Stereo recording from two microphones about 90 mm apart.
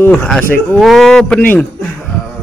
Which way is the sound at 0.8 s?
Centre (ahead or behind).